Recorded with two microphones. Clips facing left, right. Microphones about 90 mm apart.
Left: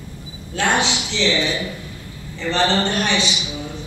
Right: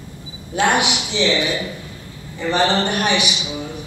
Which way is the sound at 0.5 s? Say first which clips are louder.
Right 2 dB; 15° right (ahead or behind).